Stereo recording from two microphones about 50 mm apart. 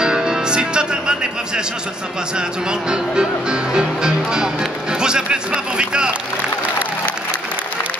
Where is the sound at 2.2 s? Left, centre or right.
Centre.